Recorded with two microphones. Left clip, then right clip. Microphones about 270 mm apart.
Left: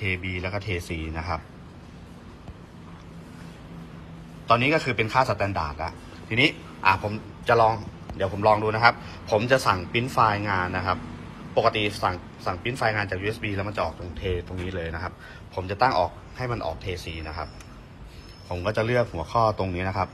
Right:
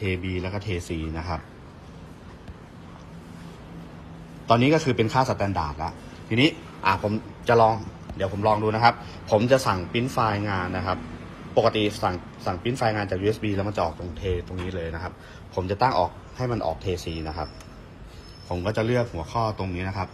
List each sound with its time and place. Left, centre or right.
0.0 s a man's voice: centre
4.5 s a man's voice: centre
7.7 s a man's voice: centre
8.4 s a man's voice: centre
18.5 s a man's voice: centre